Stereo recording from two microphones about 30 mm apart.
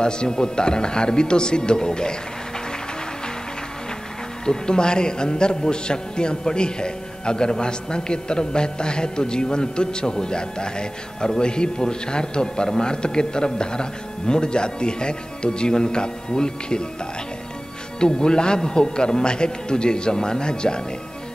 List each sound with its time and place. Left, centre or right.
0.0 s a man's voice: left
4.5 s a man's voice: left
17.9 s a man's voice: left